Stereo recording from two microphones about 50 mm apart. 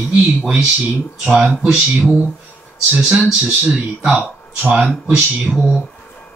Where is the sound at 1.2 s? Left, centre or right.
Right.